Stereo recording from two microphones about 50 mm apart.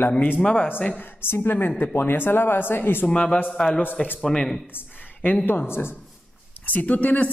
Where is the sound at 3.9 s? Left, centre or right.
Left.